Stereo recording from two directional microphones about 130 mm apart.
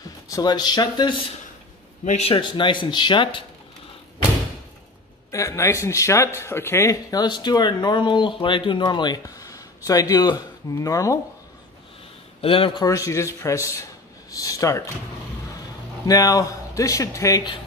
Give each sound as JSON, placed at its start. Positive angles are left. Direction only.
{"t": 0.0, "sound": "speech", "side_deg": 30}
{"t": 2.0, "sound": "speech", "side_deg": 50}
{"t": 5.3, "sound": "speech", "side_deg": 25}
{"t": 12.4, "sound": "speech", "side_deg": 45}
{"t": 12.8, "sound": "speech", "side_deg": 25}
{"t": 16.1, "sound": "speech", "side_deg": 30}